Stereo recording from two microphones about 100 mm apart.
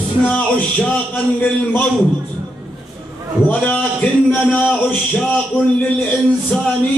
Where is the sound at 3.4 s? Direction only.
15° left (ahead or behind).